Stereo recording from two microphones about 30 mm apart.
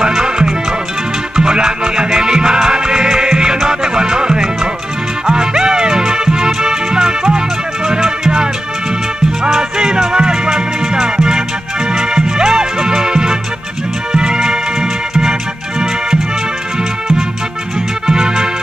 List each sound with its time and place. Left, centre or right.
0.0 s music: right
18.0 s music: right